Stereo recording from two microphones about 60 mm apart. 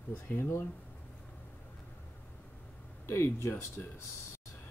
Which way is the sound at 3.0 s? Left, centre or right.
Left.